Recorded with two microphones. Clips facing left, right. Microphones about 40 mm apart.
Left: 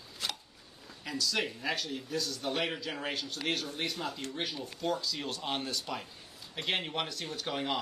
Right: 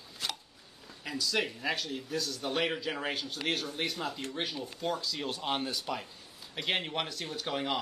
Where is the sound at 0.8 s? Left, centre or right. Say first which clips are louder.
Even; centre.